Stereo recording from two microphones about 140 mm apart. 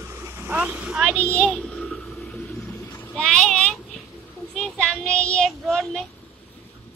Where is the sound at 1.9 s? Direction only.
Centre (ahead or behind).